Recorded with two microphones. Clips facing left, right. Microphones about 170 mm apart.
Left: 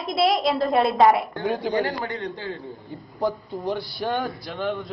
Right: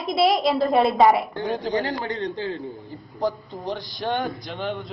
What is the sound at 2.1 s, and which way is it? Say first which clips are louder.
Speech: right 3 dB; 35° right (ahead or behind).